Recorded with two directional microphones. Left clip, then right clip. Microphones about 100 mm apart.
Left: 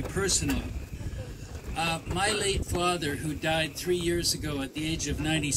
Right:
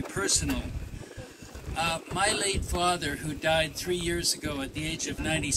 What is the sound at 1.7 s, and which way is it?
Speech, 15° right (ahead or behind).